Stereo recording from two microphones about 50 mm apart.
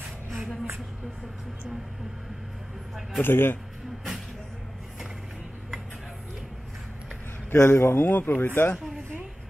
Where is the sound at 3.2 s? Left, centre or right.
Left.